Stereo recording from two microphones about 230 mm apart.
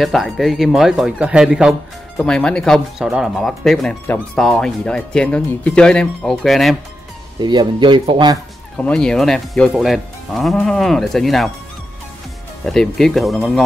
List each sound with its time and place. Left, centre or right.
0.0 s speech: centre
7.3 s speech: centre
8.7 s speech: centre
12.6 s speech: centre